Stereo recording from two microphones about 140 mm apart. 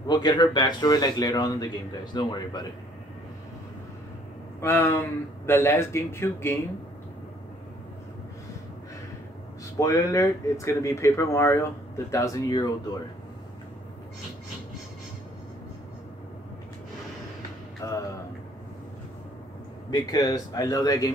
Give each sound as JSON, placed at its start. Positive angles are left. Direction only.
{"t": 0.0, "sound": "speech", "side_deg": 30}
{"t": 4.6, "sound": "speech", "side_deg": 15}
{"t": 9.8, "sound": "speech", "side_deg": 20}
{"t": 17.8, "sound": "speech", "side_deg": 25}
{"t": 19.9, "sound": "speech", "side_deg": 25}